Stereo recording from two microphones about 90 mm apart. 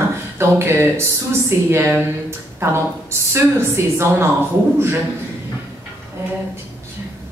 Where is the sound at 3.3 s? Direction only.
30° right (ahead or behind).